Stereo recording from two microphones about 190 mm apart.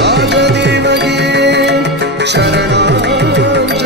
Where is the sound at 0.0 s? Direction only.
65° right (ahead or behind).